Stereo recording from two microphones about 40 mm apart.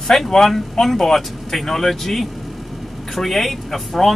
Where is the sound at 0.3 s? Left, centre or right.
Centre.